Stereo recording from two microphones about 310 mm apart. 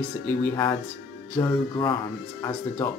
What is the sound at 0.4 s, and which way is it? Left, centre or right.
Speech, centre.